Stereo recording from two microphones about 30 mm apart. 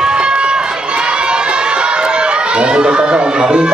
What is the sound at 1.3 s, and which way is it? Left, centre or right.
Chatter, right.